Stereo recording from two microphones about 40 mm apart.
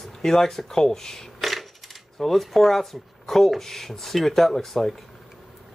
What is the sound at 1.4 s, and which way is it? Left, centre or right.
Coin, centre.